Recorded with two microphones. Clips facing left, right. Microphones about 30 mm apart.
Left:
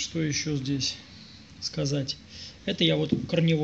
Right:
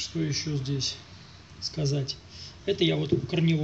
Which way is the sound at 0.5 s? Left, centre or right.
Left.